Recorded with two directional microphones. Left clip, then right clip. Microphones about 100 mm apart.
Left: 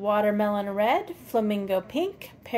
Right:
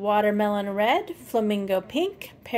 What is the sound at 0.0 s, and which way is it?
A woman's voice, 35° right (ahead or behind).